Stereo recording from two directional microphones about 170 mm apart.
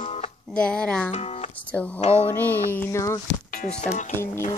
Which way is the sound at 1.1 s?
35° left (ahead or behind).